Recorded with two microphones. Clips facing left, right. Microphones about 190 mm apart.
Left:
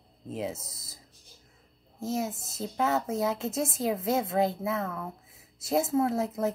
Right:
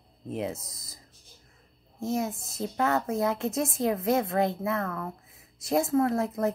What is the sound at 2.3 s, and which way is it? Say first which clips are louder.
Speech: right 2 dB; 25° left (ahead or behind).